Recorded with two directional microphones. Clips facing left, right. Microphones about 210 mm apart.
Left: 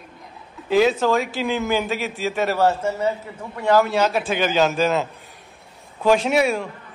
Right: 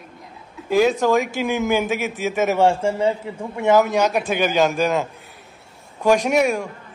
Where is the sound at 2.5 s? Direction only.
25° right (ahead or behind).